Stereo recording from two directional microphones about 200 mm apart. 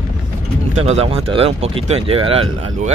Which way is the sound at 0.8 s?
30° right (ahead or behind).